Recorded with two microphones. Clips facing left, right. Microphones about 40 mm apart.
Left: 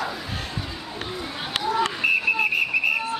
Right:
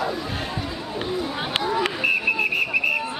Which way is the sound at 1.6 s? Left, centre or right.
Centre.